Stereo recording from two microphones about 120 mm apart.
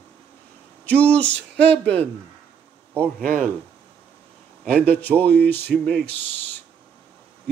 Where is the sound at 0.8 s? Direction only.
10° left (ahead or behind).